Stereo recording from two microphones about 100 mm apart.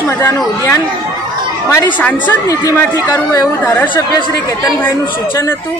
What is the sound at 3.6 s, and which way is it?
Speech, 15° left (ahead or behind).